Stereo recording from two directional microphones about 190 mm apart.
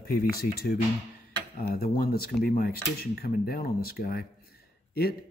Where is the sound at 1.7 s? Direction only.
50° left (ahead or behind).